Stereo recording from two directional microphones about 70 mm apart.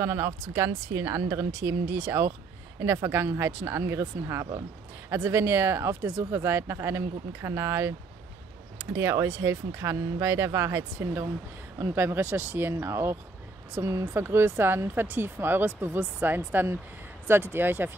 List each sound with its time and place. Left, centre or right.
0.0 s speech: right
14.2 s speech: right